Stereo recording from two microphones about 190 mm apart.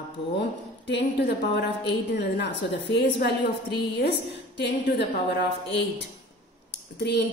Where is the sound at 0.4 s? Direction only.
65° left (ahead or behind).